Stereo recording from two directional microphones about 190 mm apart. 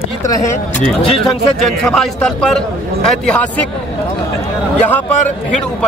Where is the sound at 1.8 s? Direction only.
5° left (ahead or behind).